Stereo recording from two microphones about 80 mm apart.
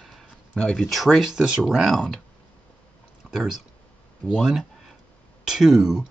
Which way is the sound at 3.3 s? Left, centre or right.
Centre.